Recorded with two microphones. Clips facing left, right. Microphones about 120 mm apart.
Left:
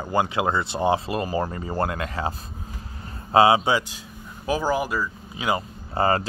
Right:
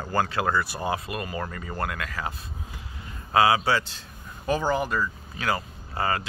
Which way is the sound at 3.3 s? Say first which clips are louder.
Left 4 dB; 25° left (ahead or behind).